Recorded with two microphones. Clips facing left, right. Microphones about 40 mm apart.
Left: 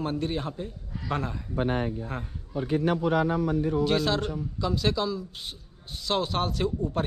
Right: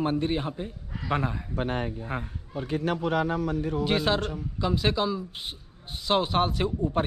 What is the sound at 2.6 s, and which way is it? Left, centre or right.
Speech, right.